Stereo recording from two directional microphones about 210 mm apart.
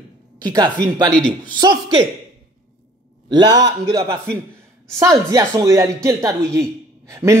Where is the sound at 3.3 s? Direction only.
20° right (ahead or behind).